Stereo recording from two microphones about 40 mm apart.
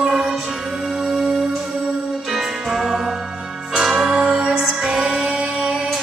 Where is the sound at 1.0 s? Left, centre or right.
Centre.